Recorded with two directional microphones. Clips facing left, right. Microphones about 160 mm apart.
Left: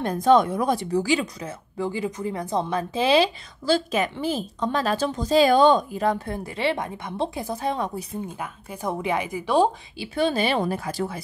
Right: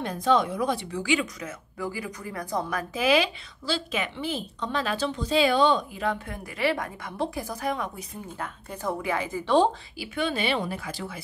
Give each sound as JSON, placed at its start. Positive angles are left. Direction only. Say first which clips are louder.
{"t": 0.0, "sound": "a woman's voice", "louder": "left 5 dB", "side_deg": 45}
{"t": 3.6, "sound": "a woman's voice", "louder": "left 7 dB", "side_deg": 45}
{"t": 8.4, "sound": "a woman's voice", "louder": "left 2 dB", "side_deg": 20}
{"t": 9.9, "sound": "a woman's voice", "louder": "left 5 dB", "side_deg": 35}